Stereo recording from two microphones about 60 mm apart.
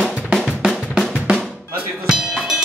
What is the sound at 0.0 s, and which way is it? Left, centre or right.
Drum, centre.